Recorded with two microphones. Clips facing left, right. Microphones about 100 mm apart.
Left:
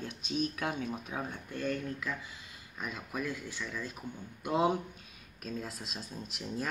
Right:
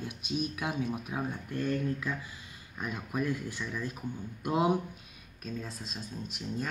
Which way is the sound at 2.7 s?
15° right (ahead or behind).